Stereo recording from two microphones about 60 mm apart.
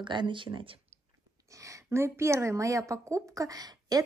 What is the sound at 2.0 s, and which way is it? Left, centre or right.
Speech, right.